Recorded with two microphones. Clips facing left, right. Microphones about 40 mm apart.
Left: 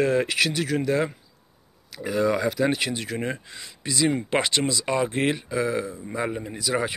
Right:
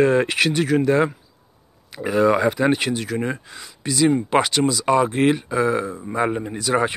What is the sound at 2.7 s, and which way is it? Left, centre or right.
Speech, centre.